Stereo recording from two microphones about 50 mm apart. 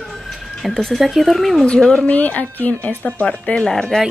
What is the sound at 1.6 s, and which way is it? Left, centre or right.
Speech, centre.